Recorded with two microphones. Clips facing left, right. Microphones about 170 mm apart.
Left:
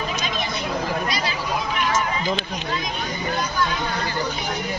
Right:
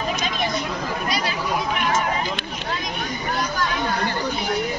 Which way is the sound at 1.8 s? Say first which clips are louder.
Left 2 dB; 55° right (ahead or behind).